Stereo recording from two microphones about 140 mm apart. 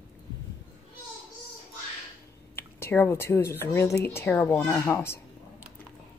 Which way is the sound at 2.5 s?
15° left (ahead or behind).